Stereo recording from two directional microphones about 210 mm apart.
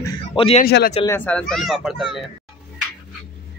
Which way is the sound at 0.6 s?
45° left (ahead or behind).